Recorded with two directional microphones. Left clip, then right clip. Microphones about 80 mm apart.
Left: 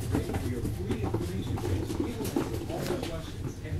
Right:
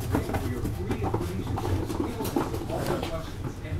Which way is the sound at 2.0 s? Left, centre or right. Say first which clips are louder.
Right 3 dB; centre.